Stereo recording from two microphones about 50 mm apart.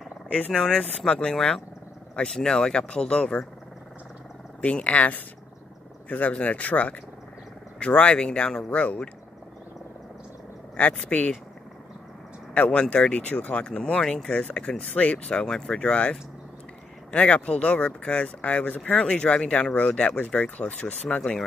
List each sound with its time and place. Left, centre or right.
0.5 s speech: centre
1.0 s speech: left
4.6 s speech: left
10.8 s speech: left
12.5 s speech: left
14.0 s speech: centre
14.3 s speech: left
15.3 s speech: centre